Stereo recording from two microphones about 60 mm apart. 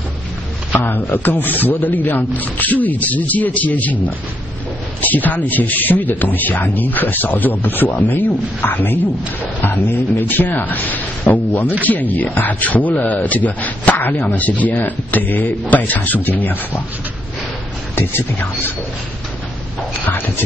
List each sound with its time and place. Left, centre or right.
0.7 s speech: left
17.9 s speech: left